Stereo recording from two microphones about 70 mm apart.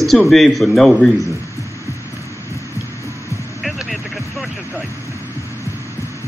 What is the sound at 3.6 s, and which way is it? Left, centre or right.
Vehicle, centre.